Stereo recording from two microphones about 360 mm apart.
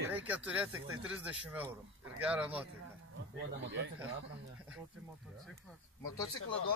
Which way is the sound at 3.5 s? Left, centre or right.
Right.